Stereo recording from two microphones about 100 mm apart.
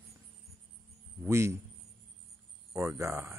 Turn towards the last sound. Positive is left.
turn(degrees=-30)  # may be behind; listen again after turning